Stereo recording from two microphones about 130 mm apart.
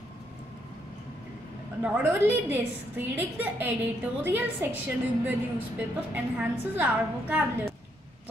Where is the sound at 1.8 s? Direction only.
10° right (ahead or behind).